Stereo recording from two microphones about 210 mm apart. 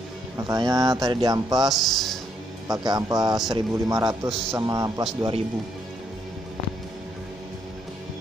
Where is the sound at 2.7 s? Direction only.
15° right (ahead or behind).